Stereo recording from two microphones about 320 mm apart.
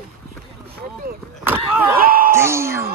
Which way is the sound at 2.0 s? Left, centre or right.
Right.